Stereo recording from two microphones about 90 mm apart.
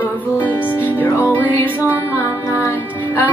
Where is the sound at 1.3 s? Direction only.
25° left (ahead or behind).